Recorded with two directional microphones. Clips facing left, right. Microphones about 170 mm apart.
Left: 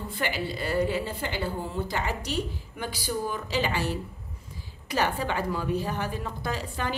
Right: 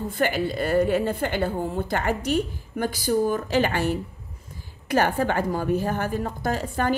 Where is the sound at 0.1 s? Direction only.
50° right (ahead or behind).